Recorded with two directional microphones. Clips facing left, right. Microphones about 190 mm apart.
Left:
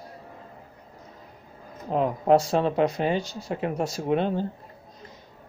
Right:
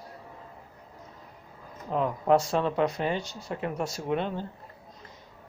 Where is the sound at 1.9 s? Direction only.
25° left (ahead or behind).